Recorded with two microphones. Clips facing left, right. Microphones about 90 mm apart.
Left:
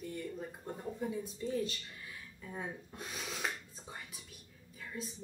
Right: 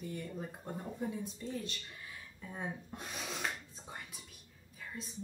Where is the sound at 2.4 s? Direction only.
Centre (ahead or behind).